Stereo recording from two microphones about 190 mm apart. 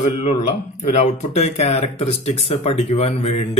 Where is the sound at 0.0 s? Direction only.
30° left (ahead or behind).